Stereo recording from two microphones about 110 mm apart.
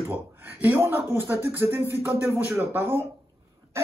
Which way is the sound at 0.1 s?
15° right (ahead or behind).